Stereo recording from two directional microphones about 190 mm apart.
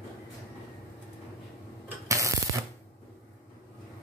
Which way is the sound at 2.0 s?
15° right (ahead or behind).